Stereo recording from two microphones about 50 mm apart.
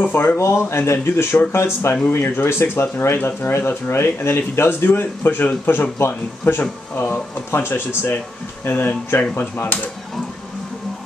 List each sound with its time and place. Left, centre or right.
0.0 s speech: left
0.4 s speech: left
1.5 s speech: left
2.2 s speech: left
3.2 s speech: left
3.5 s speech: left